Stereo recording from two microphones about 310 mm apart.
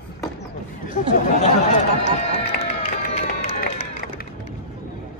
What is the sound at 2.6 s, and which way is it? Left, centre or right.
Run, centre.